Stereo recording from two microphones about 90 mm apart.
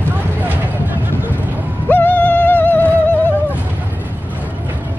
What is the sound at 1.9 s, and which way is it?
Music, 20° left (ahead or behind).